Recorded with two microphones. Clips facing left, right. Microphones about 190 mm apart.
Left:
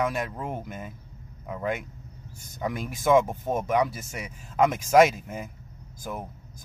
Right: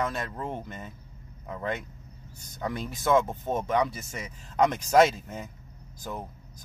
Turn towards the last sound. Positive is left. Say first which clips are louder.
# left 2 dB
turn(degrees=10)  # may be behind; listen again after turning